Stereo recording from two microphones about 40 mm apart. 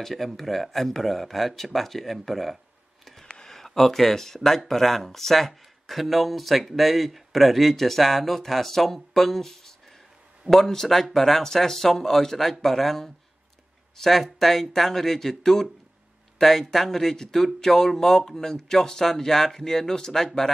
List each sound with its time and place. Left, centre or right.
0.0 s speech: centre
3.3 s a sound: centre
3.5 s speech: centre